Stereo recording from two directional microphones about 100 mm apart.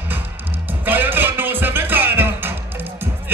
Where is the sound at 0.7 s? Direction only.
20° right (ahead or behind).